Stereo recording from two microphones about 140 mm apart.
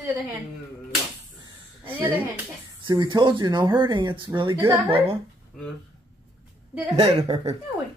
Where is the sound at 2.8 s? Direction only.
35° right (ahead or behind).